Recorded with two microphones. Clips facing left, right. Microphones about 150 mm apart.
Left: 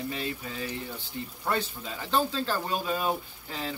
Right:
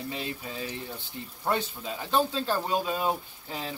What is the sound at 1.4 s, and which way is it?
Speech, 20° right (ahead or behind).